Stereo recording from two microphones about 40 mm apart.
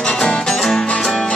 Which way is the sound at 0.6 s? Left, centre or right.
Centre.